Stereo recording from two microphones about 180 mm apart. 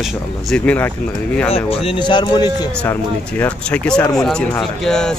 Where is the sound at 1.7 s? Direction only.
30° left (ahead or behind).